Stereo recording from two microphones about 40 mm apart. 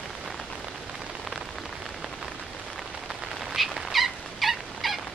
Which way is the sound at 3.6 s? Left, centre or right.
Centre.